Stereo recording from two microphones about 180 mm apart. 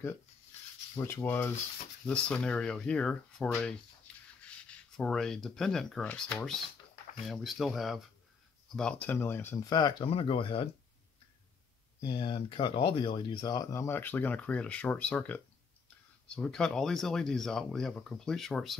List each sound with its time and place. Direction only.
0.9 s speech: 15° left (ahead or behind)
9.8 s speech: 25° left (ahead or behind)
12.0 s speech: 30° left (ahead or behind); by 18.8 s centre (ahead or behind)